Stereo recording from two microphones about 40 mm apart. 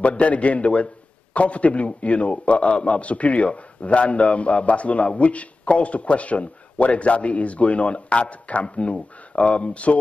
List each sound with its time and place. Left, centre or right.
0.0 s a man's voice: left